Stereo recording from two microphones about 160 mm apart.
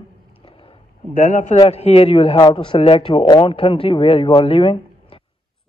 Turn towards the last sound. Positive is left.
turn(degrees=35)  # may be behind; listen again after turning